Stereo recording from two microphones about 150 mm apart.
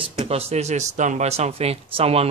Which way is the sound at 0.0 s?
40° right (ahead or behind).